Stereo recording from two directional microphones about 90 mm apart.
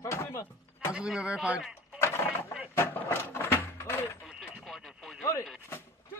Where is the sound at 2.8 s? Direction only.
25° left (ahead or behind).